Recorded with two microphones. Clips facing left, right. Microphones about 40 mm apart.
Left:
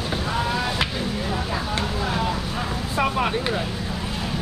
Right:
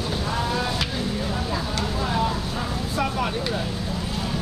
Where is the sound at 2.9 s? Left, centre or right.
Left.